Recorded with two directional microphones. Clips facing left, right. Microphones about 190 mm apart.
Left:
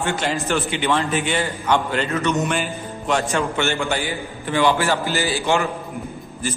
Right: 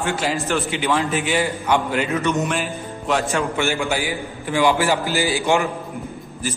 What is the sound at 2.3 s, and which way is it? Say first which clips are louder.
A man's voice: even; centre (ahead or behind).